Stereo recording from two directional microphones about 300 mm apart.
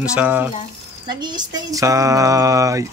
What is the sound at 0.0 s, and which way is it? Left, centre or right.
Speech, centre.